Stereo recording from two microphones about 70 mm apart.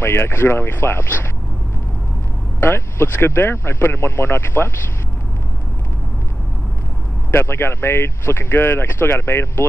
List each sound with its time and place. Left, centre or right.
0.0 s speech: left
2.6 s speech: left
7.2 s speech: left